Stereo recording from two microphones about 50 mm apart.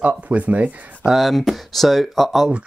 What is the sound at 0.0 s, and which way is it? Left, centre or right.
Speech, right.